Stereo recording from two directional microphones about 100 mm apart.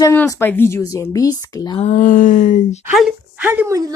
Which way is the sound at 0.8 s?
35° left (ahead or behind).